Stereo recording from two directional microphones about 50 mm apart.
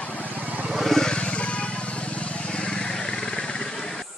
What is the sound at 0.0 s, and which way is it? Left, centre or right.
Vehicle, left.